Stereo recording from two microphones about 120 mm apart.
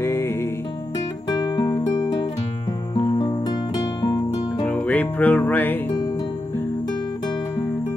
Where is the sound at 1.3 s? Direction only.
35° left (ahead or behind).